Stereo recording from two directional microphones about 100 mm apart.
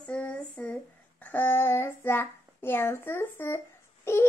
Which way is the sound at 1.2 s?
20° left (ahead or behind).